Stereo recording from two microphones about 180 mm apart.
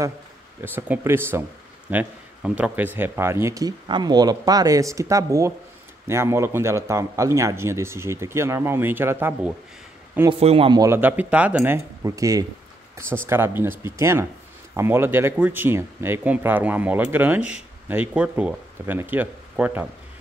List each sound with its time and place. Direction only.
0.7 s speech: 10° right (ahead or behind)
10.4 s speech: 35° right (ahead or behind)
10.8 s speech: 10° right (ahead or behind)